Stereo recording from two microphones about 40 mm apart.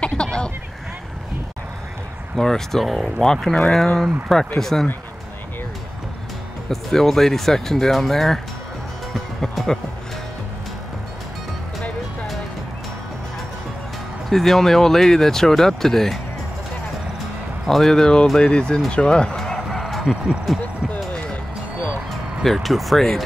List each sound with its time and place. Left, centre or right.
0.0 s a sound: left
2.3 s speech: centre
6.7 s speech: centre
14.3 s speech: centre
17.6 s speech: centre
19.3 s a sound: centre
19.7 s bow-wow: centre
20.0 s speech: centre
22.4 s speech: centre